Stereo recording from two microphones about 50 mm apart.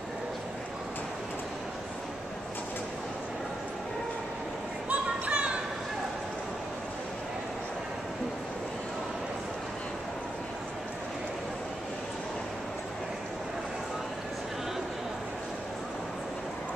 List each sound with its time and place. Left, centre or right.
4.8 s children playing: right